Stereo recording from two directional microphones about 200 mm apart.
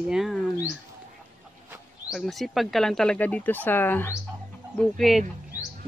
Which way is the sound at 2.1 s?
Centre (ahead or behind).